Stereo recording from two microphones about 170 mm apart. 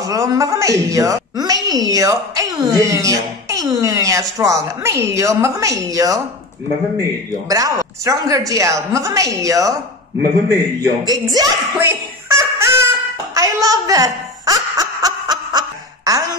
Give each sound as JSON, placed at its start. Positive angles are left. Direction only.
{"t": 0.1, "sound": "a woman's voice", "side_deg": -20}
{"t": 10.8, "sound": "a woman's voice", "side_deg": -20}
{"t": 11.9, "sound": "a sound", "side_deg": -15}